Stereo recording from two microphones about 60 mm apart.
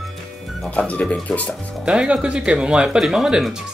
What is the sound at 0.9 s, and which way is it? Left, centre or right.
Speech, left.